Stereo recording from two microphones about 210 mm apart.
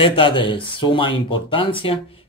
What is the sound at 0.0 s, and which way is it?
Speech, 25° left (ahead or behind).